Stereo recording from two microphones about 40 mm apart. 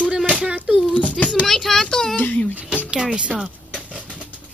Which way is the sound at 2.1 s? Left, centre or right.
Left.